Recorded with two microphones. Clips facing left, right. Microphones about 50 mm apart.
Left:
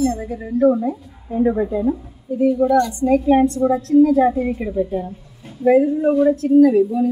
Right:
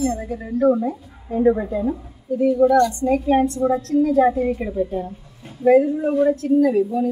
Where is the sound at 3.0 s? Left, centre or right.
Centre.